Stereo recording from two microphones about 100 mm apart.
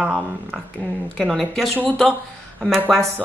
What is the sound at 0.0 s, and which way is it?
Speech, 10° right (ahead or behind).